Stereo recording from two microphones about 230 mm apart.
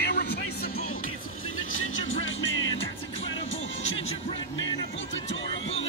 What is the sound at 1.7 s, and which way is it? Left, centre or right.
Music, left.